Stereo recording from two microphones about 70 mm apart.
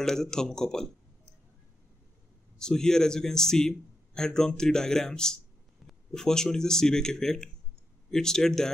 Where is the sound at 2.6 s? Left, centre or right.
Centre.